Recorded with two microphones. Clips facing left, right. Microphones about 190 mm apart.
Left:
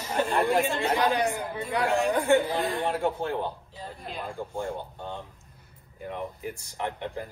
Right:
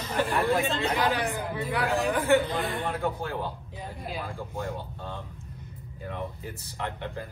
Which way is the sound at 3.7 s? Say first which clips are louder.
Right 1 dB; 15° right (ahead or behind).